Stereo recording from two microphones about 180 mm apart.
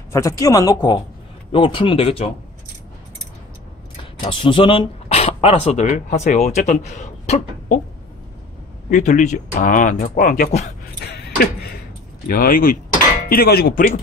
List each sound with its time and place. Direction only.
0.1 s speech: 15° left (ahead or behind)
4.3 s speech: 30° left (ahead or behind)
8.9 s speech: 45° left (ahead or behind)
11.0 s a sound: 60° left (ahead or behind)
12.3 s speech: 50° left (ahead or behind)
13.3 s a sound: 55° left (ahead or behind)